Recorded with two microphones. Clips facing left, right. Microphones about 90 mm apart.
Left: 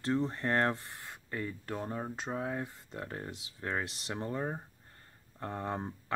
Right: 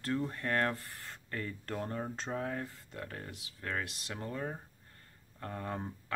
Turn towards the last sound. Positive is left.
turn(degrees=25)  # may be behind; listen again after turning